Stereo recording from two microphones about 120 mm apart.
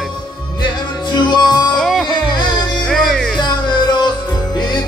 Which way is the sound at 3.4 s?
40° left (ahead or behind).